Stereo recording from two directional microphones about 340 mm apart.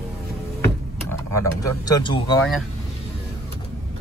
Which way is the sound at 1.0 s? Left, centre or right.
Centre.